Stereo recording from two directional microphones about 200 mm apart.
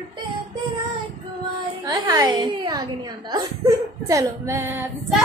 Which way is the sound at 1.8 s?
20° right (ahead or behind).